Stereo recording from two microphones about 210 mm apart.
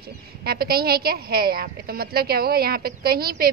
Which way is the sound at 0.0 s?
50° right (ahead or behind).